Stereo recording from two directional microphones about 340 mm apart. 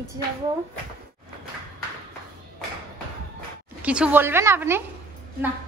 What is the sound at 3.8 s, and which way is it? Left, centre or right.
Speech, centre.